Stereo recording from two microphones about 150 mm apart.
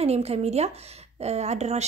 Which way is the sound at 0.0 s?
45° right (ahead or behind).